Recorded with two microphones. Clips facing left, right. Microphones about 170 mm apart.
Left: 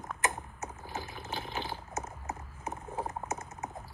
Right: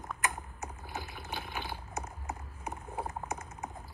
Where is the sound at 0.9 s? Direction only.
25° left (ahead or behind).